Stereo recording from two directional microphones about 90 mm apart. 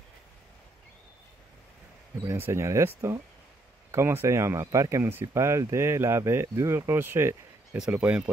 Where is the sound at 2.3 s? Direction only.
30° right (ahead or behind).